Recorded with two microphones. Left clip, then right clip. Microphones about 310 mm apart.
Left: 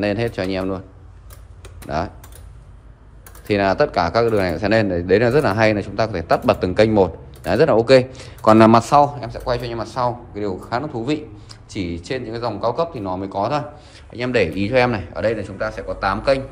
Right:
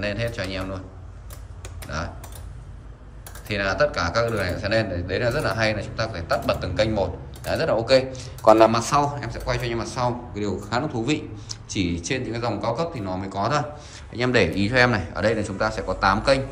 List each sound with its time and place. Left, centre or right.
0.0 s speech: centre
1.9 s speech: centre
3.4 s speech: centre
8.7 s a man's voice: centre